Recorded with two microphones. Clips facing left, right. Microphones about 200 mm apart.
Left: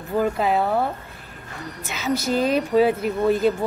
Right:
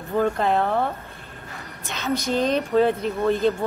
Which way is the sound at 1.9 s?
5° left (ahead or behind).